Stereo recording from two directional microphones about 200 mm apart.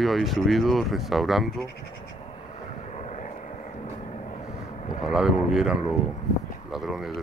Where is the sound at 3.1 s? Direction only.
35° left (ahead or behind).